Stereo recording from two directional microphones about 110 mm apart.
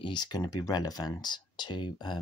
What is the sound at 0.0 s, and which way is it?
Speech, 40° left (ahead or behind).